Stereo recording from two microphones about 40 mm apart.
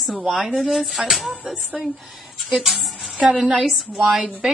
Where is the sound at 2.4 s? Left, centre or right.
Centre.